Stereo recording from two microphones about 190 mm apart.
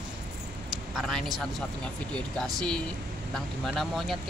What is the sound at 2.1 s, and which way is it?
Speech, 5° left (ahead or behind).